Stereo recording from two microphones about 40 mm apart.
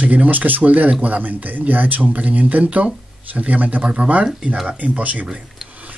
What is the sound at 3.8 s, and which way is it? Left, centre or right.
Speech, right.